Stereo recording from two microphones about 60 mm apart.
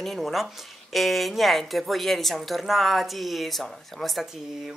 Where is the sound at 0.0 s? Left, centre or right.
Centre.